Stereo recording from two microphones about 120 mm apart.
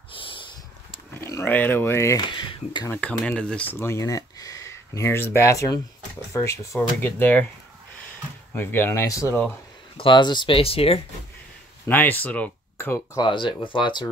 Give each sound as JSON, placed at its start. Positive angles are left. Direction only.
{"t": 0.1, "sound": "snort", "side_deg": 45}
{"t": 1.2, "sound": "speech", "side_deg": 20}
{"t": 2.1, "sound": "speech", "side_deg": 45}
{"t": 2.9, "sound": "speech", "side_deg": 10}
{"t": 3.8, "sound": "speech", "side_deg": 25}
{"t": 8.5, "sound": "speech", "side_deg": 20}
{"t": 9.9, "sound": "speech", "side_deg": 40}
{"t": 11.9, "sound": "speech", "side_deg": 15}
{"t": 13.2, "sound": "speech", "side_deg": 40}